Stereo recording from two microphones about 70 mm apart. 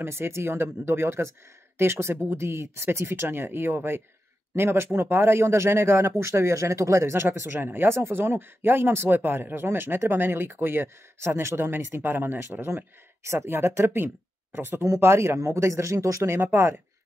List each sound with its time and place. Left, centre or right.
0.0 s a man's voice: right